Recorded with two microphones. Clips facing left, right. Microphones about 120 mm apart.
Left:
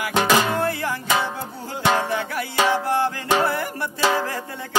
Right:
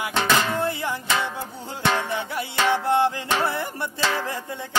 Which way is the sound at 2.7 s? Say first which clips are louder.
Right 1 dB; 25° right (ahead or behind).